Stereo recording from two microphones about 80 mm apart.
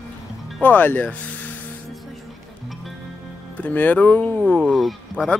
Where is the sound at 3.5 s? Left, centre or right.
Centre.